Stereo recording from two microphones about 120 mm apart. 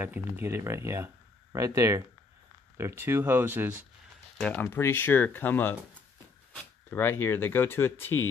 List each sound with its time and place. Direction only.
0.0 s speech: 20° right (ahead or behind)
4.4 s speech: 10° left (ahead or behind)
4.6 s speech: 20° left (ahead or behind)
6.9 s speech: 15° left (ahead or behind)